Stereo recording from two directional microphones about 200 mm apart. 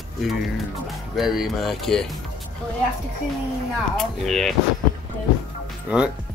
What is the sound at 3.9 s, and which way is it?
Speech, centre (ahead or behind).